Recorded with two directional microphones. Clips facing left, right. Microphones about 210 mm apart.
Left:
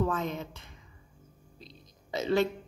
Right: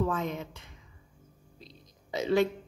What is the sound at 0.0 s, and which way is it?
Speech, 10° right (ahead or behind).